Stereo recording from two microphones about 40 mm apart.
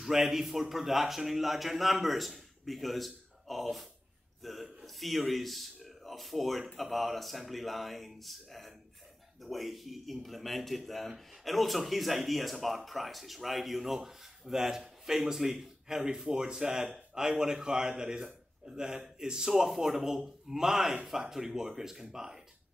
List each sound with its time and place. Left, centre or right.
0.0 s speech: centre
4.4 s a sound: centre
4.8 s a man's voice: centre